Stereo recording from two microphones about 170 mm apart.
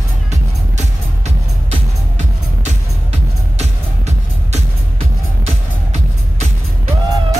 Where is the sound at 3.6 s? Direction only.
40° right (ahead or behind).